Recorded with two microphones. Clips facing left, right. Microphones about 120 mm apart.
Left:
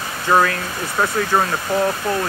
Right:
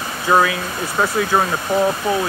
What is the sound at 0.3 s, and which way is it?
Speech, 5° right (ahead or behind).